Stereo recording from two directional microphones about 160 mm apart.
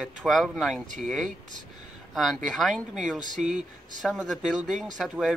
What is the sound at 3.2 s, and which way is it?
Speech, 50° right (ahead or behind).